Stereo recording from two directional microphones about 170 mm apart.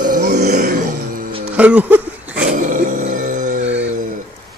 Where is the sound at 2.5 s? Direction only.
50° right (ahead or behind).